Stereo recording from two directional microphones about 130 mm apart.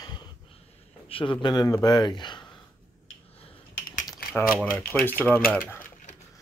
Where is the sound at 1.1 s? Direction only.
40° left (ahead or behind).